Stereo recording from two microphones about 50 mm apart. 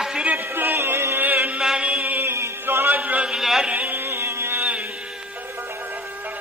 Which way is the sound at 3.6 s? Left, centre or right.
Right.